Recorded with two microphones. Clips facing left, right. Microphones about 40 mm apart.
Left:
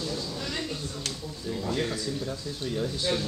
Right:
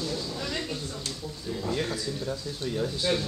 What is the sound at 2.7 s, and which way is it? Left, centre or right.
Speech, centre.